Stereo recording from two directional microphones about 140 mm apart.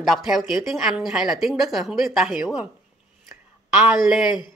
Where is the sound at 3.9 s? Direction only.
5° right (ahead or behind).